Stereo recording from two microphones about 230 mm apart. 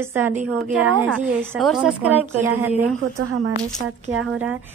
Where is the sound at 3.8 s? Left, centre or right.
Right.